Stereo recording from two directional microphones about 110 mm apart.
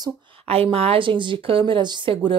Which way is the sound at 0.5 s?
65° right (ahead or behind).